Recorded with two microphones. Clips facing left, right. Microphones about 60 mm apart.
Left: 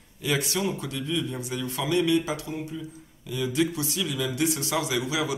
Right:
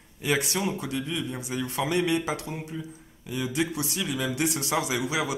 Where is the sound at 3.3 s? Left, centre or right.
Right.